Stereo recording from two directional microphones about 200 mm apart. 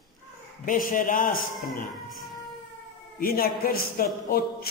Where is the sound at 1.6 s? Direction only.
Centre (ahead or behind).